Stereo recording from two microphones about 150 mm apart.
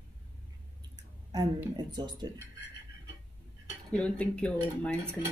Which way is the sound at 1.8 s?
30° right (ahead or behind).